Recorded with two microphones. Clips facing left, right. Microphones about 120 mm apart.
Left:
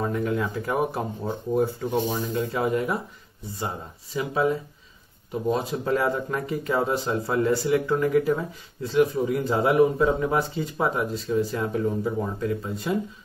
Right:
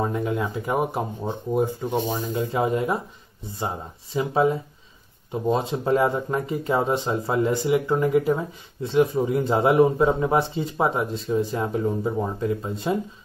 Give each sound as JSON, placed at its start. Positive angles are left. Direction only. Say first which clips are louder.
{"t": 0.0, "sound": "speech", "louder": "right 1 dB", "side_deg": -20}